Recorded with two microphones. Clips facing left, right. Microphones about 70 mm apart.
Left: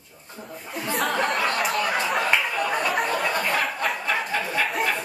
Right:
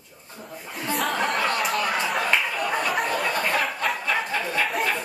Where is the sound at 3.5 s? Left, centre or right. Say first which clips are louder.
Even; centre.